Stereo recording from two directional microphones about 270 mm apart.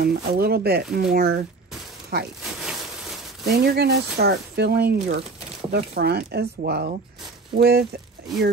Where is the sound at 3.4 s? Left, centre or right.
Right.